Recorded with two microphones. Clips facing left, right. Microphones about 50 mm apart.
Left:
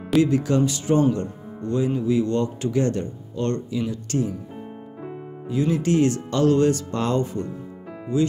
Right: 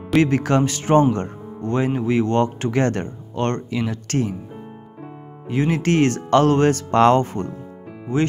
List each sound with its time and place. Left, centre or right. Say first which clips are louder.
0.2 s speech: right 2 dB; right
5.5 s speech: right 2 dB; right